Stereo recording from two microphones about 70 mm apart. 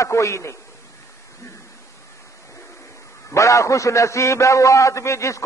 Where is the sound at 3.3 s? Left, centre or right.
Left.